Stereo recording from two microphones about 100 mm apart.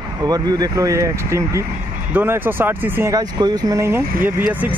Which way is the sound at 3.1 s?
45° right (ahead or behind).